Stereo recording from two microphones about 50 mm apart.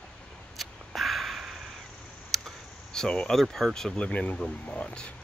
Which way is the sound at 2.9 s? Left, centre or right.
Centre.